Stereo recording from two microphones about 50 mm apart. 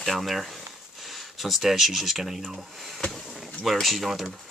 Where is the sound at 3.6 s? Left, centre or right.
Centre.